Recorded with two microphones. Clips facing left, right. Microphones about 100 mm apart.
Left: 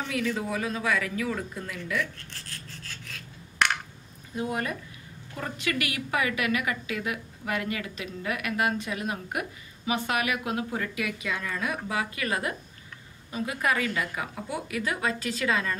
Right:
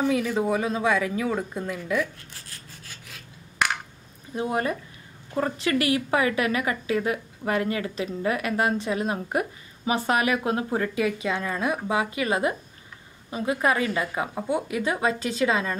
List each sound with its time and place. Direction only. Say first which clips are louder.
0.0 s a woman's voice: right 6 dB; 20° right (ahead or behind)
1.8 s rub: right 3 dB; 15° right (ahead or behind)
4.4 s a woman's voice: right 4 dB; 30° right (ahead or behind)